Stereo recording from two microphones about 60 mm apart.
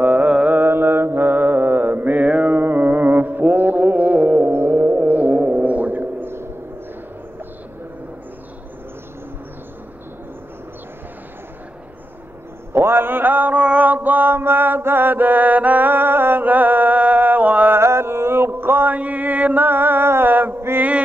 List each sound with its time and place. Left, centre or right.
0.0 s carnatic music: right
0.3 s carnatic music: centre
0.6 s mantra: right
12.7 s a sound: right
13.6 s mantra: right
17.7 s mantra: right
18.9 s mantra: right